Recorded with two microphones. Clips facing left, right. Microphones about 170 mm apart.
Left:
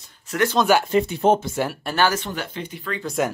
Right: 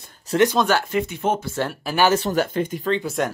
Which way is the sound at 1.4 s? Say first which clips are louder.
Left 1 dB; 15° left (ahead or behind).